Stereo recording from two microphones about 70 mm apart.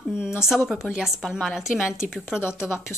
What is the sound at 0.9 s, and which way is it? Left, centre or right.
Speech, centre.